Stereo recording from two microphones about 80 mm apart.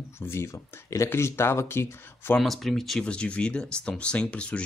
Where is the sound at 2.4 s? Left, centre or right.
Centre.